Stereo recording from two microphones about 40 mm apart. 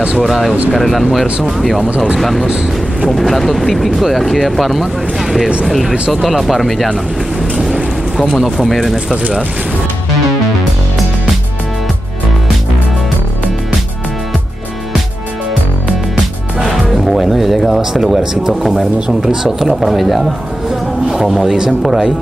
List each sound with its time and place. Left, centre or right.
0.3 s speech: centre
8.5 s speech: centre
8.9 s speech: centre
16.6 s music: centre
17.6 s speech: centre
18.8 s speech: centre
19.4 s speech: centre